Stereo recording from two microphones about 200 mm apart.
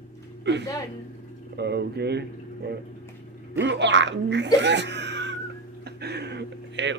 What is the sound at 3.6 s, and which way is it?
Speech, 60° right (ahead or behind).